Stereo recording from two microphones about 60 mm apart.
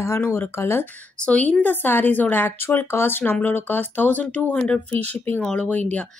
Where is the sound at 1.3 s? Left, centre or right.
Left.